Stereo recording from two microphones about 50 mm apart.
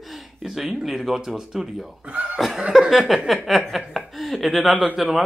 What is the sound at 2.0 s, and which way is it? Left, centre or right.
Cough, right.